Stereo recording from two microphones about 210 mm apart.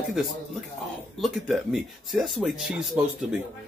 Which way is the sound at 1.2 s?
Centre (ahead or behind).